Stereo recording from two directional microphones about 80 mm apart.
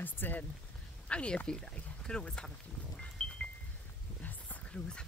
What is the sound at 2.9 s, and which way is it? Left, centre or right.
Wind chime, centre.